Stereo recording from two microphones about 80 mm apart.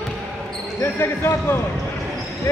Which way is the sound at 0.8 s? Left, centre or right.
Left.